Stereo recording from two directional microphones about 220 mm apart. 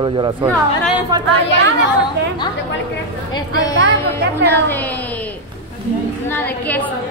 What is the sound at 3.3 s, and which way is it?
A woman's voice, 15° left (ahead or behind).